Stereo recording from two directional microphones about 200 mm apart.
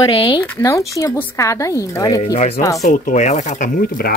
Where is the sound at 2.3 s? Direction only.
35° left (ahead or behind).